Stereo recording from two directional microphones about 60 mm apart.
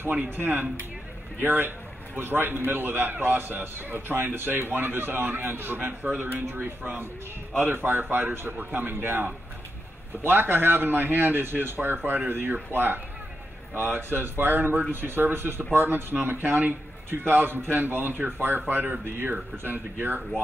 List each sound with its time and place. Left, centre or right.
0.1 s speech: right